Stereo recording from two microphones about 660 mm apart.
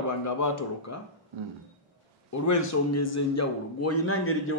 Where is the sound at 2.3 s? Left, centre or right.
Left.